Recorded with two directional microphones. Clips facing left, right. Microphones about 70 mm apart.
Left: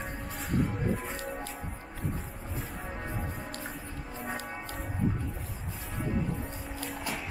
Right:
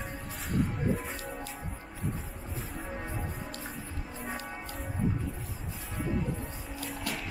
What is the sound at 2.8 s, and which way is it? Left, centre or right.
Music, centre.